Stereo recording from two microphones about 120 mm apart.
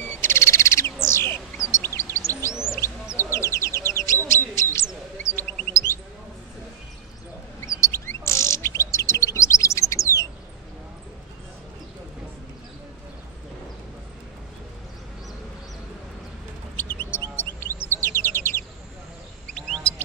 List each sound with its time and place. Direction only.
0.2 s bird: 20° left (ahead or behind)
4.7 s chirp: 20° left (ahead or behind)
7.6 s chirp: 25° left (ahead or behind)
16.7 s bird: 15° left (ahead or behind)
19.5 s bird: 5° left (ahead or behind)